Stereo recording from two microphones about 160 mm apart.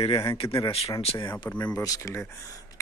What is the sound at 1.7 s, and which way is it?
Speech, 20° left (ahead or behind).